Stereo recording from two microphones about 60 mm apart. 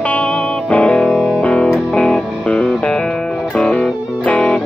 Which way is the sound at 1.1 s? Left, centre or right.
Centre.